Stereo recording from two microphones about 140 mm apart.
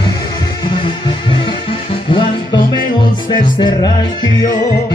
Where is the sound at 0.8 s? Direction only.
35° left (ahead or behind).